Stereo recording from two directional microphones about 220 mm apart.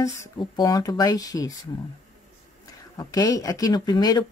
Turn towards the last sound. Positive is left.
turn(degrees=20)  # may be behind; listen again after turning